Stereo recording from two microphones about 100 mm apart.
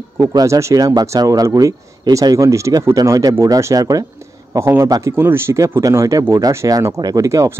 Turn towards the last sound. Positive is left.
turn(degrees=-35)  # may be behind; listen again after turning